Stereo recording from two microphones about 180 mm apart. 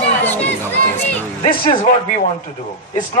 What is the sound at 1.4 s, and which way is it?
Speech, 30° left (ahead or behind).